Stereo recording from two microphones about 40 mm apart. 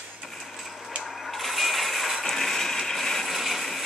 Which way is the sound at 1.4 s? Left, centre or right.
Centre.